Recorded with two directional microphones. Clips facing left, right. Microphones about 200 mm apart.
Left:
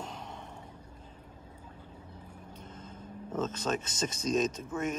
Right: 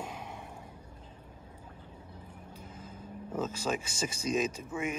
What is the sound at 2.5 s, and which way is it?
Speech, 10° right (ahead or behind).